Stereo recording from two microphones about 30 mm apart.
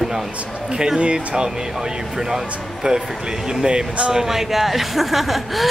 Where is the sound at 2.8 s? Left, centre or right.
Right.